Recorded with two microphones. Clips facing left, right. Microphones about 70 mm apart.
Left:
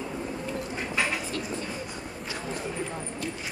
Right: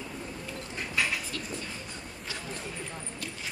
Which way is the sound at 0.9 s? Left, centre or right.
Centre.